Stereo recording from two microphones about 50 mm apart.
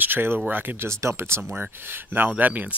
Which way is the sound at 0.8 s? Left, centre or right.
Right.